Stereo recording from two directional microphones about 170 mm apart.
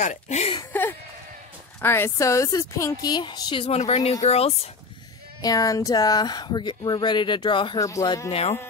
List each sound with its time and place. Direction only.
0.0 s speech: 45° left (ahead or behind)
1.8 s speech: 15° left (ahead or behind); by 4.6 s 35° left (ahead or behind)
5.4 s speech: 20° left (ahead or behind)
8.3 s speech: 35° left (ahead or behind)